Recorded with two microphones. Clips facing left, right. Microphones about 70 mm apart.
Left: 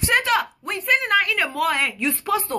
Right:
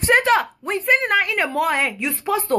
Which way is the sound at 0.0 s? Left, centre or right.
Right.